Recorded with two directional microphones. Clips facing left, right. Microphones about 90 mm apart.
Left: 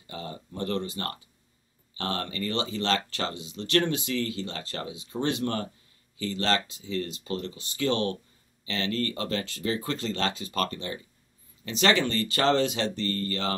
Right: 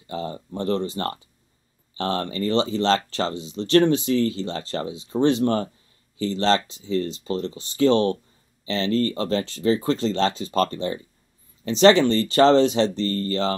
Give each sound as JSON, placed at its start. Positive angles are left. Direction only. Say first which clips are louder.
{"t": 0.1, "sound": "speech", "louder": "right 8 dB", "side_deg": -30}